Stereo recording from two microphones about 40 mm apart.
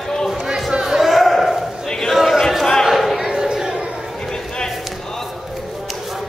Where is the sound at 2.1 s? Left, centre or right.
Centre.